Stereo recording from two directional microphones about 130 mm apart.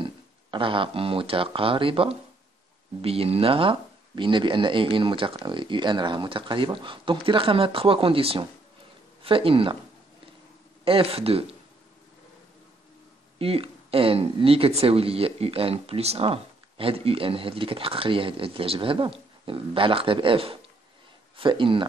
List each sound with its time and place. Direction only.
0.0 s speech: 40° right (ahead or behind)
10.8 s speech: 45° right (ahead or behind)
13.4 s speech: 45° right (ahead or behind)